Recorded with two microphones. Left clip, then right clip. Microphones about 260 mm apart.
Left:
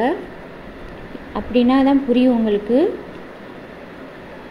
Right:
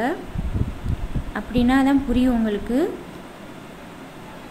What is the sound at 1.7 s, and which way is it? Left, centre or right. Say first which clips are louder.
Speech: left 2 dB; right.